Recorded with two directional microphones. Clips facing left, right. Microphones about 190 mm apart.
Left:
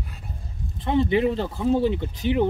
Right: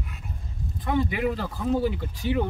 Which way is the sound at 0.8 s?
25° left (ahead or behind).